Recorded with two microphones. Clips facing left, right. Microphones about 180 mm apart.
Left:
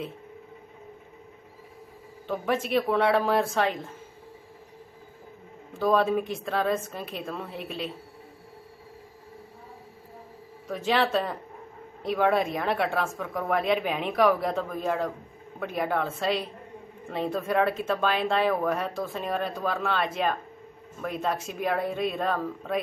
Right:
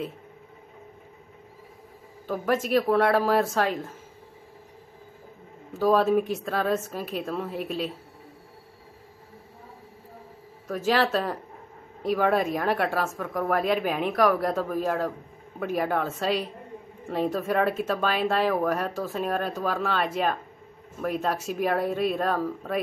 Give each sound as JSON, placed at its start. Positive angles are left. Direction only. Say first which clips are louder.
{"t": 2.2, "sound": "speech", "louder": "right 2 dB", "side_deg": -5}
{"t": 5.7, "sound": "speech", "louder": "right 2 dB", "side_deg": -10}
{"t": 10.7, "sound": "speech", "louder": "right 1 dB", "side_deg": -5}